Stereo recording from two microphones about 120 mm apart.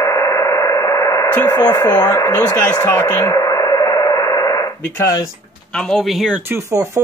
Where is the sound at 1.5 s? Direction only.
30° left (ahead or behind).